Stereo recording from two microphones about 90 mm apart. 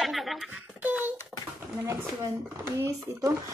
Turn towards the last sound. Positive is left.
turn(degrees=-40)  # may be behind; listen again after turning